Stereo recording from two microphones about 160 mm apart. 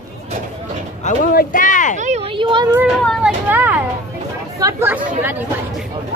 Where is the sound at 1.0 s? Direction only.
60° left (ahead or behind).